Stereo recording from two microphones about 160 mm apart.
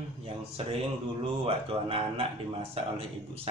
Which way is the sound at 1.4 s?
35° right (ahead or behind).